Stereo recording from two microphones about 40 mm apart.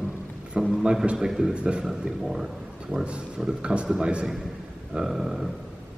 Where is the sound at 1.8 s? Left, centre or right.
Centre.